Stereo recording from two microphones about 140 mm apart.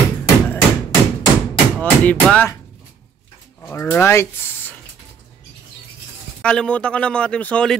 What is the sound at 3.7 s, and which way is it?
Speech, 15° left (ahead or behind).